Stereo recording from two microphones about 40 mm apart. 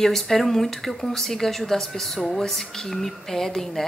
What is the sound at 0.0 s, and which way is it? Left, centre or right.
A woman's voice, centre.